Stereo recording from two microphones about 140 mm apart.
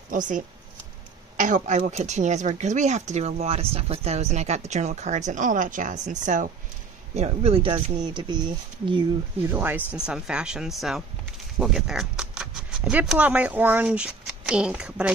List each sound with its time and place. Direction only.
0.1 s speech: 70° right (ahead or behind)
7.2 s speech: 45° right (ahead or behind)
9.4 s speech: 15° right (ahead or behind)